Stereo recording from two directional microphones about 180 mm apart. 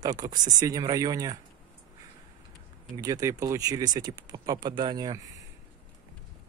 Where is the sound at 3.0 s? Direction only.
20° right (ahead or behind).